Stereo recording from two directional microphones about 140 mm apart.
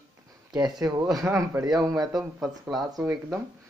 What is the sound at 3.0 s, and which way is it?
Speech, 15° right (ahead or behind).